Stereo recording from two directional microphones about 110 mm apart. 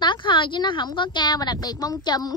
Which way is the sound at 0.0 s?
45° left (ahead or behind).